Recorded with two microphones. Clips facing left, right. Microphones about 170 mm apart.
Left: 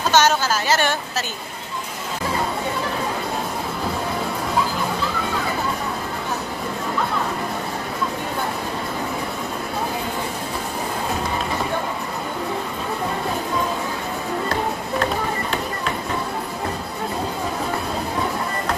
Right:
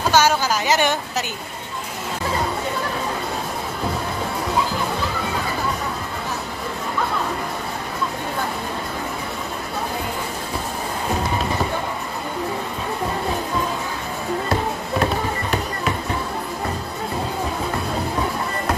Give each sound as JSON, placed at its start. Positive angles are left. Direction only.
{"t": 0.1, "sound": "a woman's voice", "side_deg": -10}